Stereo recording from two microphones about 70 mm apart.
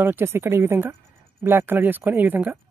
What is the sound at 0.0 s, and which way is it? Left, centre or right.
Speech, right.